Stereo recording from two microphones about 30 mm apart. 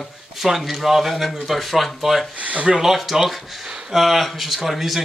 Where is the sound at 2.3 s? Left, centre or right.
Right.